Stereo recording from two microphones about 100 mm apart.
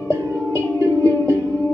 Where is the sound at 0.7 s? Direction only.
25° left (ahead or behind).